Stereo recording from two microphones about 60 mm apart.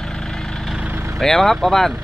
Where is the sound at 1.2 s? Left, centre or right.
Centre.